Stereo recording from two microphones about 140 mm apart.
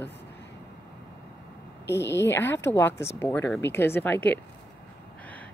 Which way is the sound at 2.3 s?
15° left (ahead or behind).